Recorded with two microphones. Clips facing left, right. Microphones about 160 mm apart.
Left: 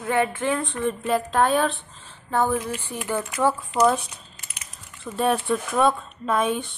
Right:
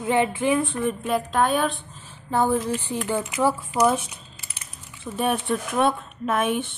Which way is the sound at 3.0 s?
20° right (ahead or behind).